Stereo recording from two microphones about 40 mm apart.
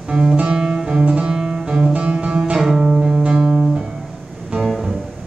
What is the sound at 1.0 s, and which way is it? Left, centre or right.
Music, right.